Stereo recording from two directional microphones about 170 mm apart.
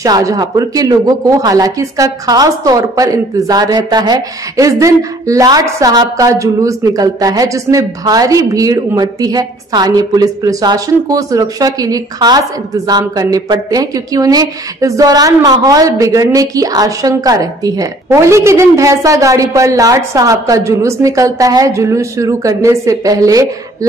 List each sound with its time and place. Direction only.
0.0 s speech: 20° right (ahead or behind)